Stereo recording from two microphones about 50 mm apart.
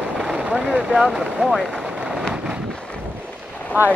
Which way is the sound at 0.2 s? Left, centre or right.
Right.